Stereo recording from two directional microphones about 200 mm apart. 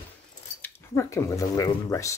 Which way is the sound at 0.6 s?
15° left (ahead or behind).